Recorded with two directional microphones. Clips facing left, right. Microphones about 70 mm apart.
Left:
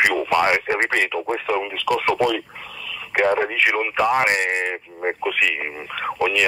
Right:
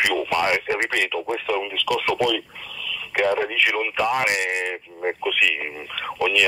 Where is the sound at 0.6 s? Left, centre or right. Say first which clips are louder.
Left 3 dB; left.